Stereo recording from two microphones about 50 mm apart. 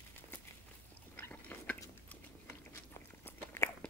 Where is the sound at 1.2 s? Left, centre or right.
Left.